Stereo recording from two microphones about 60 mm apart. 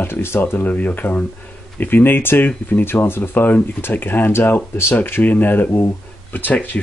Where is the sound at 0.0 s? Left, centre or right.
Left.